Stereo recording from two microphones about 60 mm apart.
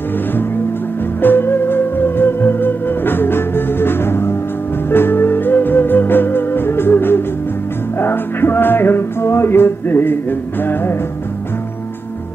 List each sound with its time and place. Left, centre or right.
1.2 s music: left